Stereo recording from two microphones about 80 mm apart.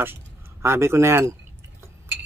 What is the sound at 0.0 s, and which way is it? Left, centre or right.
Speech, right.